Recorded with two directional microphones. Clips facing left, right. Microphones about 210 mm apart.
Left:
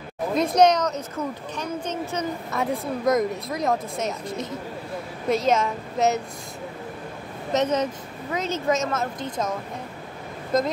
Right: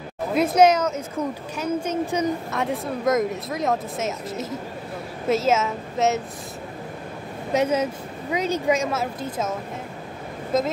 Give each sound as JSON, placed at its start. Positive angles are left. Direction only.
{"t": 0.3, "sound": "speech", "side_deg": -5}
{"t": 2.5, "sound": "speech", "side_deg": 0}
{"t": 7.5, "sound": "speech", "side_deg": -10}